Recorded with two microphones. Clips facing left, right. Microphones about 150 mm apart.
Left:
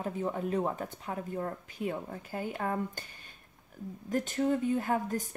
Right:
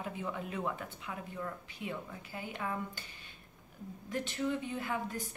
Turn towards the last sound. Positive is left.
turn(degrees=45)  # may be behind; listen again after turning